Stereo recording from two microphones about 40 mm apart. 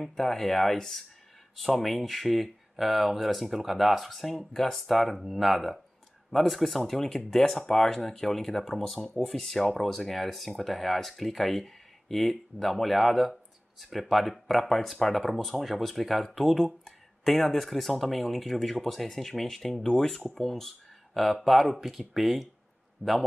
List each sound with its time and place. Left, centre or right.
0.0 s speech: centre
23.0 s a man's voice: left